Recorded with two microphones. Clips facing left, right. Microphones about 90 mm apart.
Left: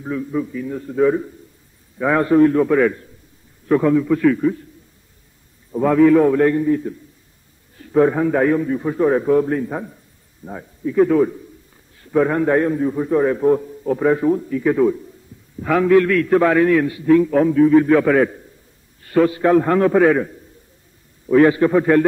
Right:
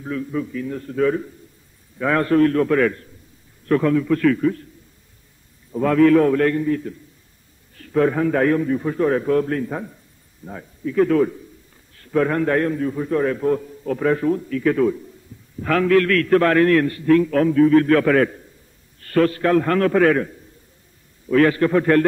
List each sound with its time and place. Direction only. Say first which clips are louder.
0.0 s a man's voice: left 2 dB; 15° left (ahead or behind)
5.7 s a man's voice: left 2 dB; 10° left (ahead or behind)